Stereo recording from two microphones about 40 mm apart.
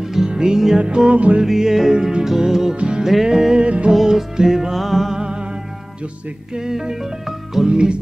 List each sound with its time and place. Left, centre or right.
0.0 s music: centre
0.7 s music: right
1.4 s music: centre
2.7 s music: right
3.0 s music: centre
3.5 s music: right
3.9 s music: centre
5.2 s music: right
6.5 s music: centre
7.6 s music: right